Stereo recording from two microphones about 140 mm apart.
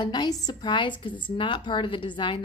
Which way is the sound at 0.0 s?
30° left (ahead or behind).